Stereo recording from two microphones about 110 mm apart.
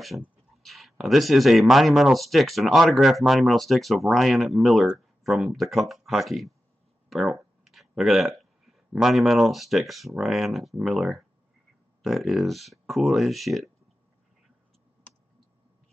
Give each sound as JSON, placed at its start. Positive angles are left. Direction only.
{"t": 0.1, "sound": "speech", "side_deg": -15}
{"t": 0.6, "sound": "speech", "side_deg": 0}